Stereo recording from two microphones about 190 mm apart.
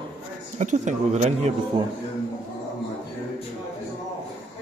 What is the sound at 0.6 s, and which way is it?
Speech, 40° right (ahead or behind).